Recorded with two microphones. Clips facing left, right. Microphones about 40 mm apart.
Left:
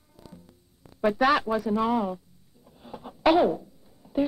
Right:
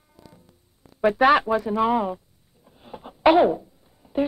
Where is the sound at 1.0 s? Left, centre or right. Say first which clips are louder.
Right 5 dB; right.